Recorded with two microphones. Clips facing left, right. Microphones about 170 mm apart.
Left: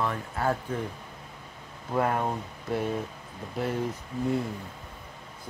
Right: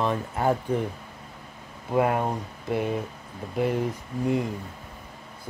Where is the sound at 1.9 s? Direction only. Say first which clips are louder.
Right 3 dB; 15° right (ahead or behind).